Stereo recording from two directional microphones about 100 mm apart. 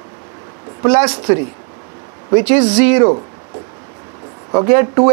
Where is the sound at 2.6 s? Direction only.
45° right (ahead or behind).